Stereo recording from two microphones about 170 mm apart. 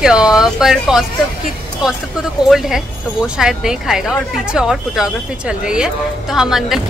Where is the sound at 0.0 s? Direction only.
5° right (ahead or behind).